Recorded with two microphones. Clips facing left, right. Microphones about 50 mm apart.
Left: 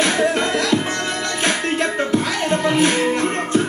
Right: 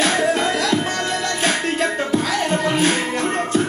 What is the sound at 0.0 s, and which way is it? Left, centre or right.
Music, centre.